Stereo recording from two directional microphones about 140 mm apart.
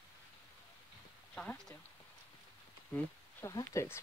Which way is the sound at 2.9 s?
15° left (ahead or behind).